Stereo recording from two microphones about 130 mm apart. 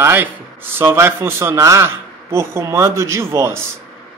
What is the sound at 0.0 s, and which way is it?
A man's voice, 15° right (ahead or behind).